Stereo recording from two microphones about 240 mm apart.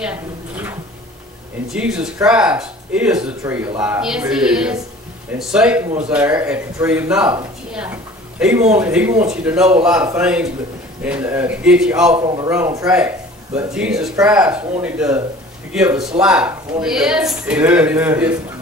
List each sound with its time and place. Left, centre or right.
0.0 s speech: centre
12.2 s a man's voice: centre